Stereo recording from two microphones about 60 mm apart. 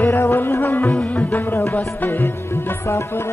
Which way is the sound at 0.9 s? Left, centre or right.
Left.